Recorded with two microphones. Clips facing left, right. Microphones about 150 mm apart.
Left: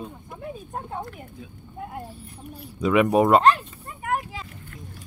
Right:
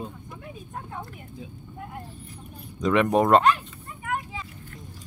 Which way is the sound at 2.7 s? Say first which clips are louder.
Left 2 dB; 5° left (ahead or behind).